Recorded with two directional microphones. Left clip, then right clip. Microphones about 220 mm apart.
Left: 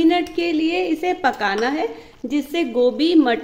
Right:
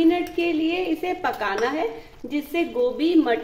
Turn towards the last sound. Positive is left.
turn(degrees=50)  # may be behind; listen again after turning